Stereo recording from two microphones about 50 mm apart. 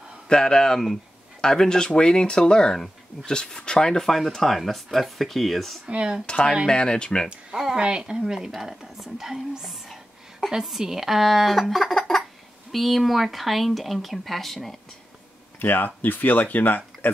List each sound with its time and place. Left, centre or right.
0.3 s speech: centre
4.0 s speech: centre
5.9 s speech: right
6.2 s speech: centre
7.5 s speech: centre
7.8 s speech: centre
15.6 s speech: left